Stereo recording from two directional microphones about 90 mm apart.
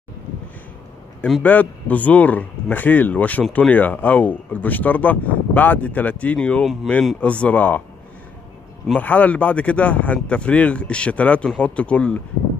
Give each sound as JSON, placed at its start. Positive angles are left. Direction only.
{"t": 1.4, "sound": "speech", "side_deg": 15}
{"t": 6.6, "sound": "speech", "side_deg": 0}
{"t": 7.2, "sound": "speech", "side_deg": 15}
{"t": 8.9, "sound": "speech", "side_deg": 15}